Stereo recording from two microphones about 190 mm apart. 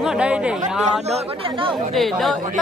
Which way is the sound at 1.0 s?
30° right (ahead or behind).